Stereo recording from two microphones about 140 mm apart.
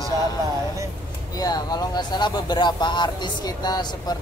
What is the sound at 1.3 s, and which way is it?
Speech, 30° left (ahead or behind).